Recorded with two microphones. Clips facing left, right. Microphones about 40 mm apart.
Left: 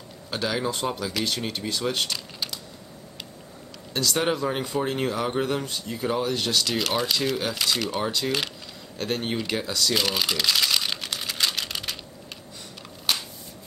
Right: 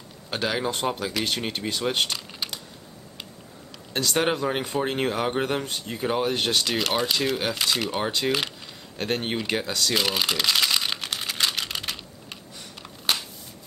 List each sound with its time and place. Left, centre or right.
0.3 s speech: centre
2.4 s computer keyboard: centre
3.9 s speech: right
6.8 s speech: centre
9.9 s typing: centre